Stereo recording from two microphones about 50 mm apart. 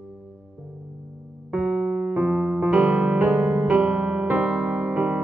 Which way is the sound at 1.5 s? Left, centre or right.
Right.